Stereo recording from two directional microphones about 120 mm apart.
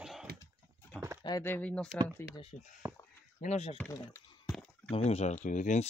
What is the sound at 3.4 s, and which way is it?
Speech, 60° left (ahead or behind).